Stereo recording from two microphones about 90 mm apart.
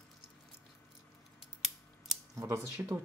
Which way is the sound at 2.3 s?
35° right (ahead or behind).